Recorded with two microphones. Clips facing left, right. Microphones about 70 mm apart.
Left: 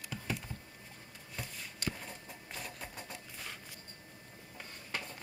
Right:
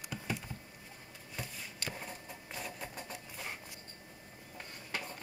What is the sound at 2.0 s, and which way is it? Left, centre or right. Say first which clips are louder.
Sewing machine: right 1 dB; centre.